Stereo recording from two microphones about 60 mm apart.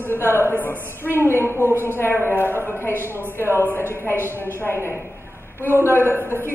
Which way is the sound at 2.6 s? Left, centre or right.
Left.